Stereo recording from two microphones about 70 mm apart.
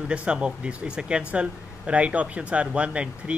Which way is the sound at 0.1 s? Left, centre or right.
Centre.